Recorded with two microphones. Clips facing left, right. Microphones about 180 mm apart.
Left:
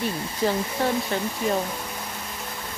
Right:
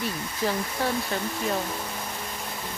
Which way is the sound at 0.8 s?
5° right (ahead or behind).